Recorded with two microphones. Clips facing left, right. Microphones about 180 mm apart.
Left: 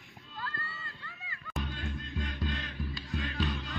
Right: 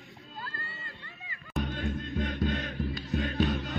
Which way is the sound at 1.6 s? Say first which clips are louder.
Right 6 dB; 50° right (ahead or behind).